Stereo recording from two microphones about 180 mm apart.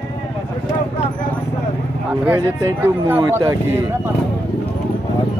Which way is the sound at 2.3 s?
15° right (ahead or behind).